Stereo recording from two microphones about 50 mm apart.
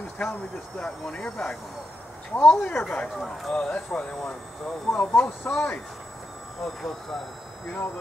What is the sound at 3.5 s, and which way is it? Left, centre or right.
Speech, centre.